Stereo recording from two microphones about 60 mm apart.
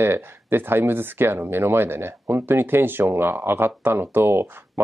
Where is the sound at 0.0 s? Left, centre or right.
Right.